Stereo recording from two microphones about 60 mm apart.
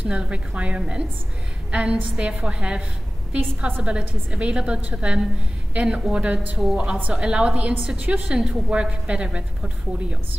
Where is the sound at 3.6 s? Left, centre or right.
Right.